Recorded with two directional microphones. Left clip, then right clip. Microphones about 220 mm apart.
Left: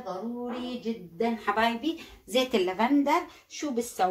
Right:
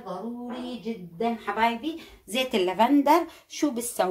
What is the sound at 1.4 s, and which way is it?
Speech, 25° left (ahead or behind).